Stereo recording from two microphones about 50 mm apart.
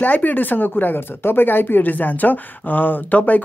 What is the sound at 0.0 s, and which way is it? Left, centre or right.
Speech, left.